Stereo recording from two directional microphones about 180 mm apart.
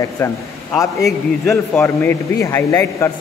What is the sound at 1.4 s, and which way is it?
A man's voice, 10° left (ahead or behind).